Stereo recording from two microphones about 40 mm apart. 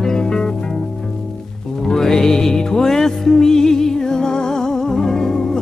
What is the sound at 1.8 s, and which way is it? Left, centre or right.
Music, centre.